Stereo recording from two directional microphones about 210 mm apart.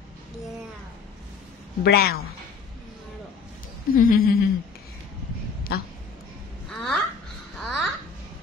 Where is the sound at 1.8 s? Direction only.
50° left (ahead or behind).